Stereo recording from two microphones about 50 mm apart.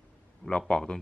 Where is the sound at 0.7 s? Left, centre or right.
Centre.